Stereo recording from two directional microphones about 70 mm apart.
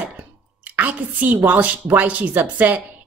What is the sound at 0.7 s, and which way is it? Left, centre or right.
A woman's voice, right.